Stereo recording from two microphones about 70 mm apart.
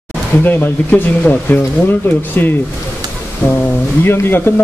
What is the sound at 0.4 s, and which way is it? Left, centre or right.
A man's voice, left.